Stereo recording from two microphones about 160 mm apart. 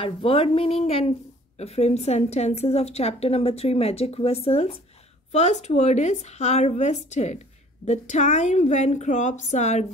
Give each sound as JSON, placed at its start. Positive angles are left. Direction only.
{"t": 0.0, "sound": "a woman's voice", "side_deg": 35}